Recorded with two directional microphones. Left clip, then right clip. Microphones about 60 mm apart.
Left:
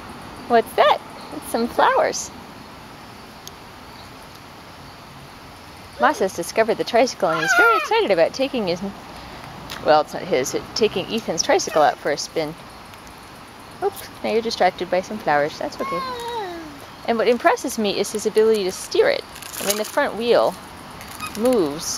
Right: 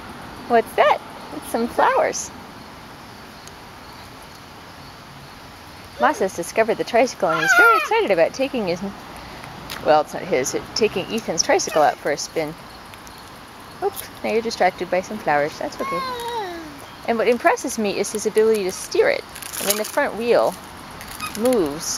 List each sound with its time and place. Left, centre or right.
0.5 s speech: centre
5.9 s speech: centre
9.7 s speech: centre
13.7 s speech: centre